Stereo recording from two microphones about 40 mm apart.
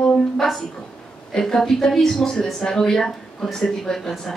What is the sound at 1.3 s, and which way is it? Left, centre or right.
Speech, centre.